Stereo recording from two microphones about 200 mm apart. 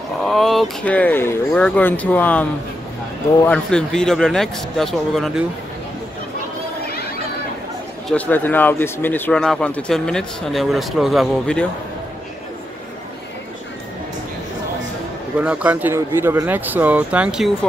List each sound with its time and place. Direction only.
0.2 s speech: centre (ahead or behind)
3.4 s speech: 5° left (ahead or behind)
8.1 s speech: 10° left (ahead or behind)
15.3 s speech: 5° right (ahead or behind)